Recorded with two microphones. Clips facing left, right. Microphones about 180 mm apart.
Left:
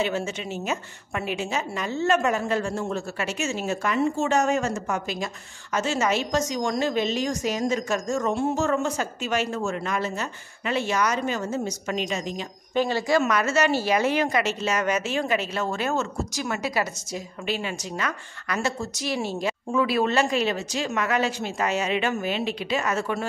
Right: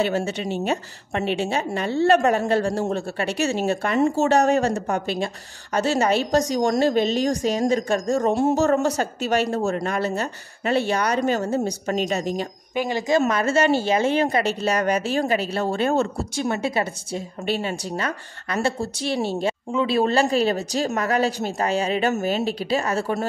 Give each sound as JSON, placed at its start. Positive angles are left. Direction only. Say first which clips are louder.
{"t": 0.0, "sound": "speech", "louder": "right 4 dB", "side_deg": -35}
{"t": 12.7, "sound": "speech", "louder": "right 1 dB", "side_deg": -15}
{"t": 13.2, "sound": "a woman's voice", "louder": "right 3 dB", "side_deg": -30}